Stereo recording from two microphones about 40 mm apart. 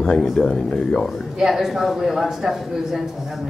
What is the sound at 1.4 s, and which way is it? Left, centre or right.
A man's voice, centre.